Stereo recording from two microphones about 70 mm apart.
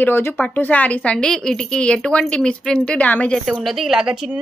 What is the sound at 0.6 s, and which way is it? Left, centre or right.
A woman's voice, left.